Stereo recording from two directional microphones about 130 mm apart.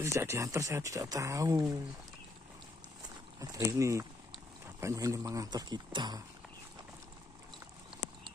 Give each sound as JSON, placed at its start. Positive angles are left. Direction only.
{"t": 0.0, "sound": "speech", "side_deg": -20}
{"t": 3.3, "sound": "speech", "side_deg": -25}